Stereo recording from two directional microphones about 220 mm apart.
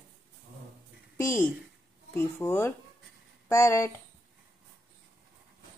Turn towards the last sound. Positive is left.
turn(degrees=10)  # may be behind; listen again after turning